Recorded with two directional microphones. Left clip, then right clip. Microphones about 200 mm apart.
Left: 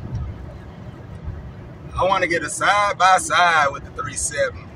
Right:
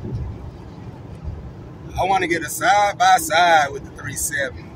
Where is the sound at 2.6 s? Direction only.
10° right (ahead or behind).